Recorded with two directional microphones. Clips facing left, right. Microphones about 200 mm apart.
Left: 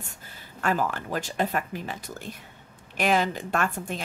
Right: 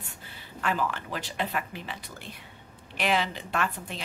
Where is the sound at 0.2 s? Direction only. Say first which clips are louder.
Left 3 dB; 45° left (ahead or behind).